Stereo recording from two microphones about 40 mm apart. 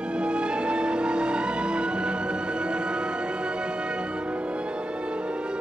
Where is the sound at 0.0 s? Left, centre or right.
Right.